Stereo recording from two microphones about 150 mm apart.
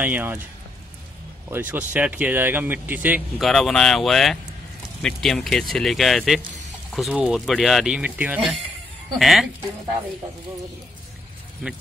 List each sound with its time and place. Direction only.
0.0 s speech: 10° right (ahead or behind)
1.5 s speech: 10° right (ahead or behind)
3.3 s speech: centre (ahead or behind)